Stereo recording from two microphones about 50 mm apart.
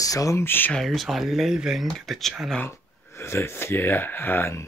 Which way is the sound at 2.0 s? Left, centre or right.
Centre.